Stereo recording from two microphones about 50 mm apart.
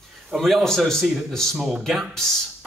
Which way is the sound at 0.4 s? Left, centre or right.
Centre.